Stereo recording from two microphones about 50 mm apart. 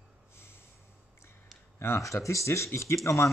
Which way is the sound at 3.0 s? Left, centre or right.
Left.